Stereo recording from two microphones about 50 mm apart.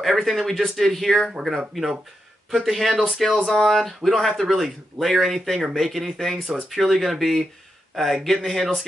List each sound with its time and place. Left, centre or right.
0.0 s speech: centre
2.5 s speech: centre